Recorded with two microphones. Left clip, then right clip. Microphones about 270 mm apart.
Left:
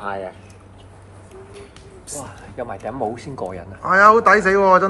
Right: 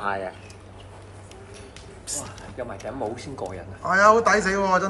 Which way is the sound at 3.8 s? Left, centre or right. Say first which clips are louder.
Left 5 dB; centre.